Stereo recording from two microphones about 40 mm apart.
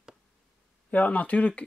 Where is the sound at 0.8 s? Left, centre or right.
Left.